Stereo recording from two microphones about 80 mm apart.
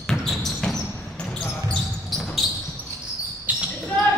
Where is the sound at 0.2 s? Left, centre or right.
Centre.